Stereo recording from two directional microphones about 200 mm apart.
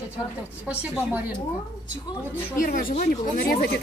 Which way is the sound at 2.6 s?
45° left (ahead or behind).